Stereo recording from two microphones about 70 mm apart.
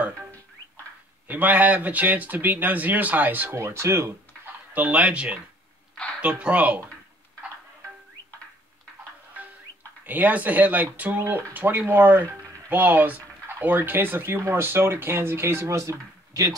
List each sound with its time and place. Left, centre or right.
1.2 s speech: right
3.5 s speech: right
4.7 s speech: right
10.0 s speech: right